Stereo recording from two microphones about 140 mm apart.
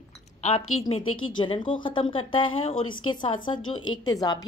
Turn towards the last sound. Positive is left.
turn(degrees=30)  # may be behind; listen again after turning